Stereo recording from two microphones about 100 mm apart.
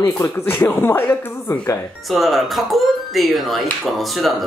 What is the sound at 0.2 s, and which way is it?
Speech, 25° left (ahead or behind).